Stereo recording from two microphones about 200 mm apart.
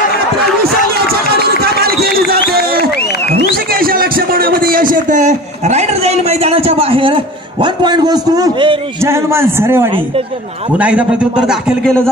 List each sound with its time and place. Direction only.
1.6 s run: 50° right (ahead or behind)
3.0 s a sound: 55° left (ahead or behind)
3.8 s a man's voice: 45° right (ahead or behind); by 12.0 s centre (ahead or behind)